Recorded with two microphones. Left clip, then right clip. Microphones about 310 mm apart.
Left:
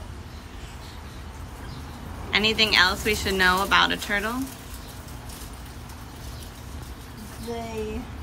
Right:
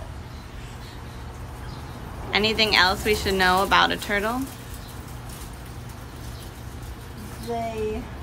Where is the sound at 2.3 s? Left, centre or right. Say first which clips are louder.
Even; centre.